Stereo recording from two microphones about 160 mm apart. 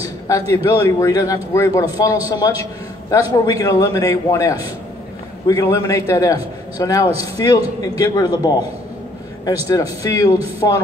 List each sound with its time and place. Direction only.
0.5 s a man's voice: 20° left (ahead or behind)